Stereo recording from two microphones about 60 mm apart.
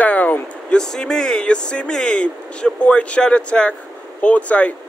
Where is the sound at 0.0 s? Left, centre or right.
Left.